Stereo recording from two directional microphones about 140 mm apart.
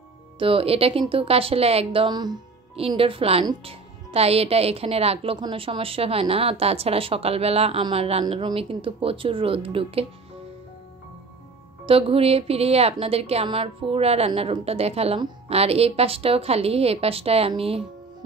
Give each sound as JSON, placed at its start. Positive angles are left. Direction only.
{"t": 0.4, "sound": "a woman's voice", "side_deg": -40}
{"t": 3.0, "sound": "a woman's voice", "side_deg": -40}
{"t": 11.8, "sound": "a woman's voice", "side_deg": -40}